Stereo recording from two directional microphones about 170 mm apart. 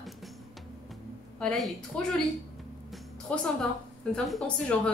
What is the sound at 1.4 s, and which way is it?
Speech, centre (ahead or behind).